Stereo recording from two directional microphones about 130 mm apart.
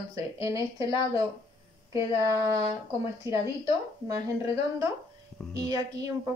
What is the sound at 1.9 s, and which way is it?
Speech, 25° right (ahead or behind).